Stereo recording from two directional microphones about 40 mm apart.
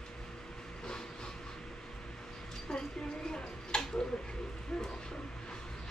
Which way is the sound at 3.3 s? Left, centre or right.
Centre.